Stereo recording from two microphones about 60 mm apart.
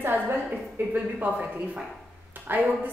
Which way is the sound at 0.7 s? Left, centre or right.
Right.